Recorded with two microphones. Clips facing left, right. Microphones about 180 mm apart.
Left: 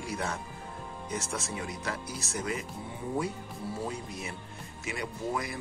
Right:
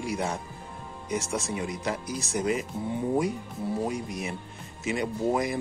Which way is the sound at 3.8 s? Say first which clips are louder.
Right 6 dB; 15° right (ahead or behind).